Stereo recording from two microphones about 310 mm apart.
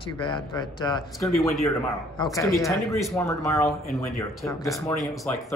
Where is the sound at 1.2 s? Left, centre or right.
Centre.